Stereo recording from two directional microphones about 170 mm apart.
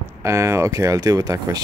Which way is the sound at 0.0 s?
15° right (ahead or behind).